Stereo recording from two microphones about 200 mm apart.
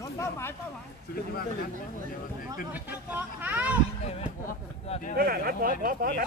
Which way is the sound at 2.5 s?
10° right (ahead or behind).